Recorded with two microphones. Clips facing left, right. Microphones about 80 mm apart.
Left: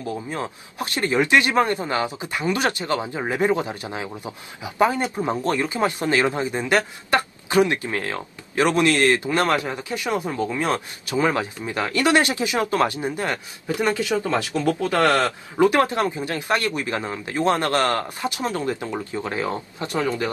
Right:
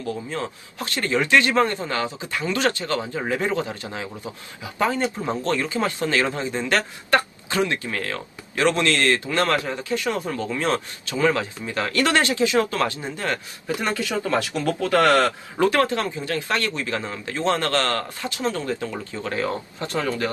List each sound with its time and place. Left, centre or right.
0.0 s speech: left